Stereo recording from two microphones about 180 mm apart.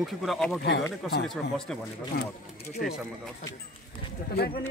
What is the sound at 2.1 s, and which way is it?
Speech, 60° left (ahead or behind).